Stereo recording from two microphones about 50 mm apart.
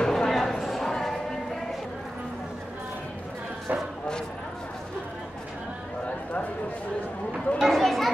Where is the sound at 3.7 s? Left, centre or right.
Right.